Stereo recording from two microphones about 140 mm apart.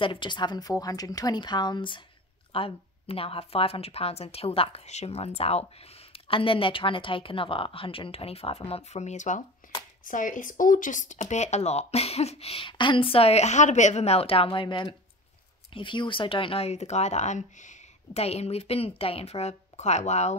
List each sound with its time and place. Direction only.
0.0 s a woman's voice: 35° left (ahead or behind); by 20.3 s 55° left (ahead or behind)